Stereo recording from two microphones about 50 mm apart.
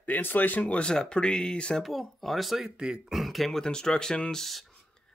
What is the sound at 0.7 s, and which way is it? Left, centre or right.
Speech, centre.